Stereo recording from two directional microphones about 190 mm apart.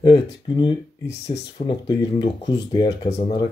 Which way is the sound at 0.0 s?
25° left (ahead or behind).